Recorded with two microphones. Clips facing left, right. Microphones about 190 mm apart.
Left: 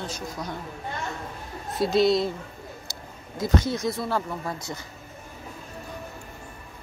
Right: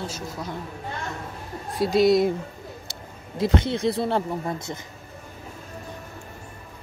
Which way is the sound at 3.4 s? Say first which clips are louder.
Right 2 dB; 30° right (ahead or behind).